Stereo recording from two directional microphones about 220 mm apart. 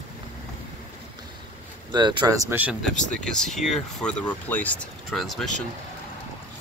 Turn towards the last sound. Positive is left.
turn(degrees=0)  # may be behind; listen again after turning